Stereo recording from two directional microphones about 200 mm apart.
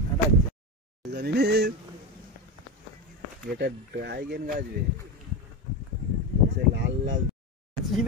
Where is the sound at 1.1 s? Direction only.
55° right (ahead or behind).